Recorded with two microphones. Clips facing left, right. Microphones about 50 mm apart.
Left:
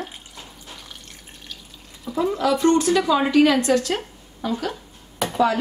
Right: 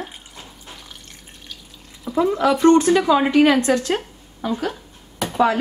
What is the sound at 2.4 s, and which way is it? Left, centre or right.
A woman's voice, right.